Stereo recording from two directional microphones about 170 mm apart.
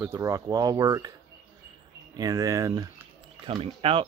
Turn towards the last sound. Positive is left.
turn(degrees=-35)  # may be behind; listen again after turning